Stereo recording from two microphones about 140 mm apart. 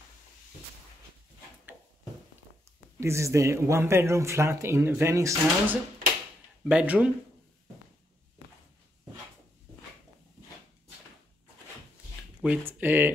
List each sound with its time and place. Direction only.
3.0 s speech: 20° right (ahead or behind)
6.6 s speech: 10° right (ahead or behind)
12.4 s speech: 10° right (ahead or behind)